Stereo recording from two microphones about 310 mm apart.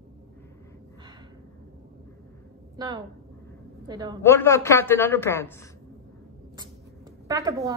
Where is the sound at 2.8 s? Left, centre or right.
Centre.